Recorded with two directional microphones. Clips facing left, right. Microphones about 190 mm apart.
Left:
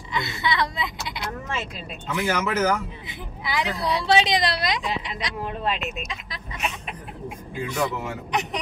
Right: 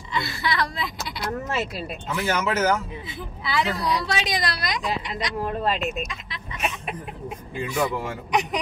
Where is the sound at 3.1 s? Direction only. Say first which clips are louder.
Right 1 dB; 15° left (ahead or behind).